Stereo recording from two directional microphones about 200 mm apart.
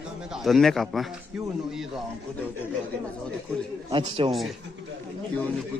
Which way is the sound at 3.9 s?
25° right (ahead or behind).